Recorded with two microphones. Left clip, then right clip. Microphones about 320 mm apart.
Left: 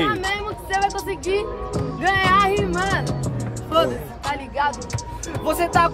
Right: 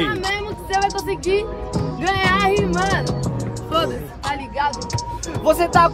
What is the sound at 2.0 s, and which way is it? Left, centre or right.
Music, centre.